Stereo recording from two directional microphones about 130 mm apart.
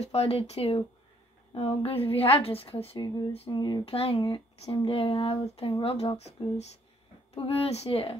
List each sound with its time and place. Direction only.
0.0 s speech: 50° left (ahead or behind)
3.5 s speech: 35° left (ahead or behind)
3.8 s speech: 45° left (ahead or behind)
7.3 s speech: 45° left (ahead or behind)